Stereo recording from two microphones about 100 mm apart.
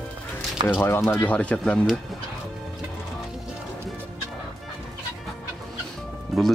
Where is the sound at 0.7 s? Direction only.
25° left (ahead or behind).